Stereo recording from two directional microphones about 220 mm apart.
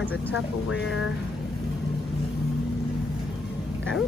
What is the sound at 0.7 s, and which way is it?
Speech, 60° left (ahead or behind).